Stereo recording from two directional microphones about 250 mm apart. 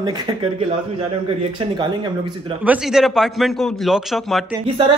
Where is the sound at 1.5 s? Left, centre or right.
Centre.